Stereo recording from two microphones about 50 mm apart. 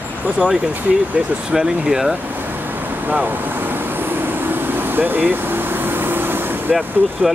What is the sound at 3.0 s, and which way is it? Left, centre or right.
Vehicle, right.